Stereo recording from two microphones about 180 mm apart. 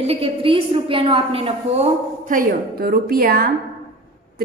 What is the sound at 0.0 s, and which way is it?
A woman's voice, 30° right (ahead or behind).